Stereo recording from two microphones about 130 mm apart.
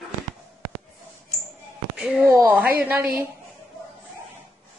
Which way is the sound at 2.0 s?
5° right (ahead or behind).